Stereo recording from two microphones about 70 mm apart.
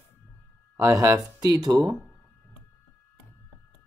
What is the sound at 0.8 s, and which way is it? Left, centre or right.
Speech, right.